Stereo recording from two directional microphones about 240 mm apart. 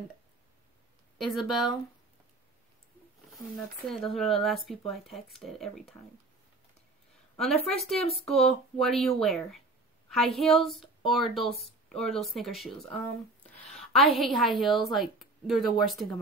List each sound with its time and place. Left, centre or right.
1.1 s speech: centre
3.3 s speech: centre
7.6 s speech: centre
11.4 s speech: left
11.9 s a woman's voice: centre